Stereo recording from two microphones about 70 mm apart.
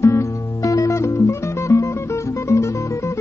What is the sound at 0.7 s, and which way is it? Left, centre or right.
Music, left.